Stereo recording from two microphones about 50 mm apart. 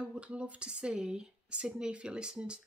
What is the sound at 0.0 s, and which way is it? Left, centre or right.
Speech, right.